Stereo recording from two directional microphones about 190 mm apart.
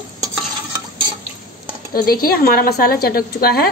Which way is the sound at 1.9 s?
50° left (ahead or behind).